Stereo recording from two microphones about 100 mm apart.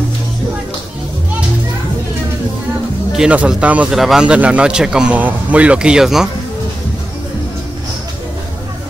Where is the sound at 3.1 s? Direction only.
10° right (ahead or behind).